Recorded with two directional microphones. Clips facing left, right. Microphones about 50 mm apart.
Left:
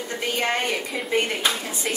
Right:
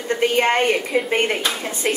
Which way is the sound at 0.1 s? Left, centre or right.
Right.